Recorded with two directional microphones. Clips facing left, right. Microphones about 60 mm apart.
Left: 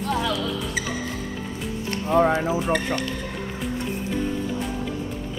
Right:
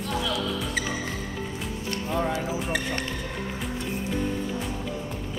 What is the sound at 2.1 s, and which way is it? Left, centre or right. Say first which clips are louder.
Speech: left 9 dB; left.